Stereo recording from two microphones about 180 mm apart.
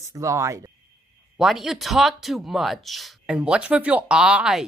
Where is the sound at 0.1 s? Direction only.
15° right (ahead or behind).